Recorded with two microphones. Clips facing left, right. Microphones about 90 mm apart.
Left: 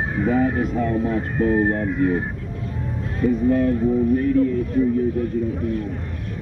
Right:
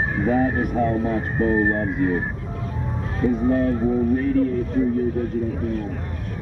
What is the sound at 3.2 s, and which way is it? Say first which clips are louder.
Speech: left 1 dB; 30° right (ahead or behind).